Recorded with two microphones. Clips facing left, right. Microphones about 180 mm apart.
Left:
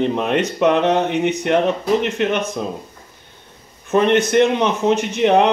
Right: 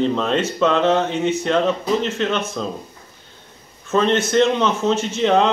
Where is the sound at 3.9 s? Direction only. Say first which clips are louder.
Left 3 dB; 15° left (ahead or behind).